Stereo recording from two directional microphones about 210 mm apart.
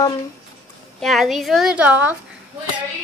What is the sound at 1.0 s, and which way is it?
Speech, centre (ahead or behind).